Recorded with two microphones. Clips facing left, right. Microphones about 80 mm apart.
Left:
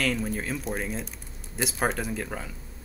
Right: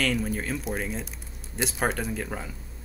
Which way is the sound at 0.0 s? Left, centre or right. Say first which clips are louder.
Right 1 dB; centre.